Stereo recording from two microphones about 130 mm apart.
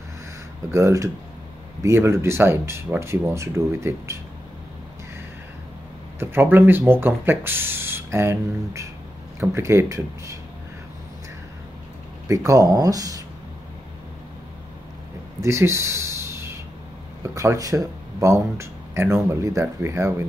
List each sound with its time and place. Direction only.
0.7 s speech: 20° right (ahead or behind)
6.1 s speech: 15° right (ahead or behind)
12.3 s speech: 25° right (ahead or behind)
15.4 s a sound: 20° right (ahead or behind)
17.2 s speech: 25° right (ahead or behind)